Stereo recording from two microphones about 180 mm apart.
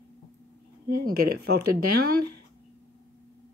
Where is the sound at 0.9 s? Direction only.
55° right (ahead or behind).